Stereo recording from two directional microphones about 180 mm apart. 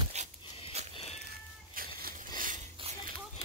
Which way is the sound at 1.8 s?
50° right (ahead or behind).